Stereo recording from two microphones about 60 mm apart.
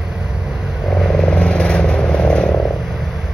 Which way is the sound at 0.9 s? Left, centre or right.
Centre.